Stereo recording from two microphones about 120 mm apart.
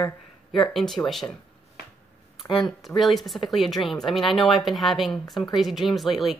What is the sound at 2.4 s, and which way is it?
Speech, 40° left (ahead or behind).